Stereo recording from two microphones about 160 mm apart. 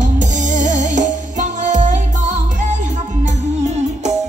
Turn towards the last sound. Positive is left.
turn(degrees=-45)  # may be behind; listen again after turning